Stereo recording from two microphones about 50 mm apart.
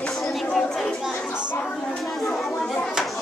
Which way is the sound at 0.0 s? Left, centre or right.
Centre.